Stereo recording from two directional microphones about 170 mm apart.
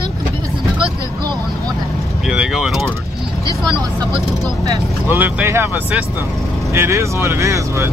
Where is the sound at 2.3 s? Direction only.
5° right (ahead or behind).